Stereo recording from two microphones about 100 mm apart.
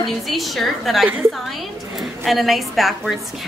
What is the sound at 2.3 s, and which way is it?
Speech, centre (ahead or behind).